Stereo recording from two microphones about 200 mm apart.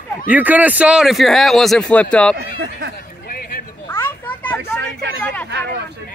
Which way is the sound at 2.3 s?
60° right (ahead or behind).